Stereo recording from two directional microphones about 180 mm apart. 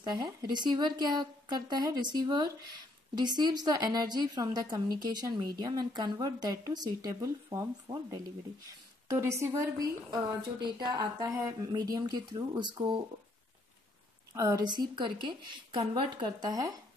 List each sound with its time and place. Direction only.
0.1 s a woman's voice: 25° right (ahead or behind)
14.3 s a woman's voice: 20° right (ahead or behind)